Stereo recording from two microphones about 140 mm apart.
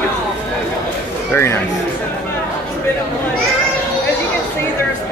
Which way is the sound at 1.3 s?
20° left (ahead or behind).